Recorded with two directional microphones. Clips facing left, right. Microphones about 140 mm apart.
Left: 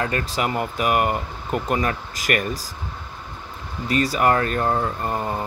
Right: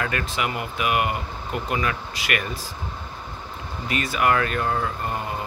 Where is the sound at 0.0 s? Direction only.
35° left (ahead or behind).